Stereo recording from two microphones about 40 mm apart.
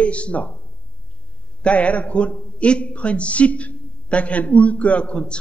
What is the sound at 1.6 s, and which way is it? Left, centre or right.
A man's voice, left.